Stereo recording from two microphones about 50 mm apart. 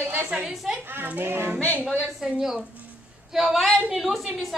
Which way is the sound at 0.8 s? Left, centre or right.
Right.